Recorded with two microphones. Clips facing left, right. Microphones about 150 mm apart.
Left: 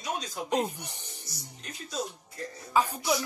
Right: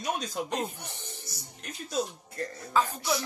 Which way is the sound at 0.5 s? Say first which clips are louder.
Left 4 dB; 15° left (ahead or behind).